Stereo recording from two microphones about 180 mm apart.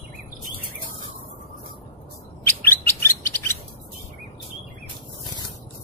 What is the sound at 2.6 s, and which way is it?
Bird, 10° left (ahead or behind).